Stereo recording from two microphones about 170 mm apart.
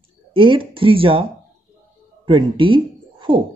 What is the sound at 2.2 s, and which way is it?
Speech, 30° right (ahead or behind).